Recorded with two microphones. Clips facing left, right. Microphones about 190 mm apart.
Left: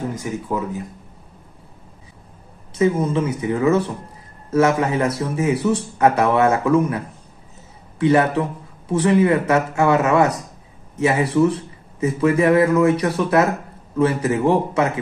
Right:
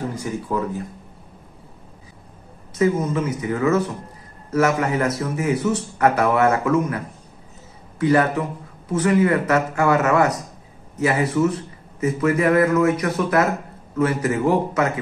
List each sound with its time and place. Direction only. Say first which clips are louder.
0.2 s speech: even; 20° left (ahead or behind)
2.7 s a man's voice: left 1 dB; 30° left (ahead or behind)
8.0 s a man's voice: left 2 dB; 25° left (ahead or behind)